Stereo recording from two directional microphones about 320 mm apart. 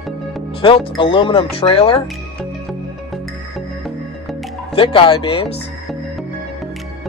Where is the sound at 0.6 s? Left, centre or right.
Centre.